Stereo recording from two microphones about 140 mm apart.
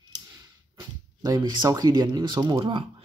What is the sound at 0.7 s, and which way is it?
Speech, 25° right (ahead or behind).